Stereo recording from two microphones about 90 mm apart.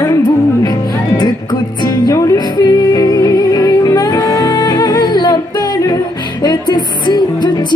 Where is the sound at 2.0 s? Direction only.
45° left (ahead or behind).